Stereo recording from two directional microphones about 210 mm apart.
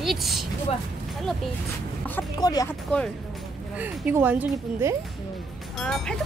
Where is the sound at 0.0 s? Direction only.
Centre (ahead or behind).